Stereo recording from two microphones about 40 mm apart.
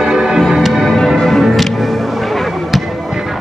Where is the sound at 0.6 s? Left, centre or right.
Centre.